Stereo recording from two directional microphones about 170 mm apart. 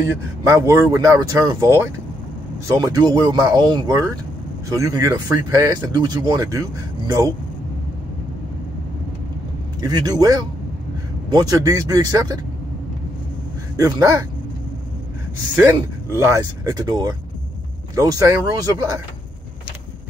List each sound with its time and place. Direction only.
0.5 s speech: 20° right (ahead or behind)
9.8 s speech: 20° right (ahead or behind)
13.7 s speech: 20° right (ahead or behind)
15.5 s speech: 15° right (ahead or behind)